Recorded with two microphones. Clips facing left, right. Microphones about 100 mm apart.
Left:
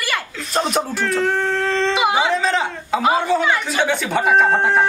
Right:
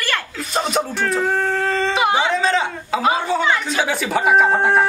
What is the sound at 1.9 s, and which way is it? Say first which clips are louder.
Speech: even; 5° left (ahead or behind).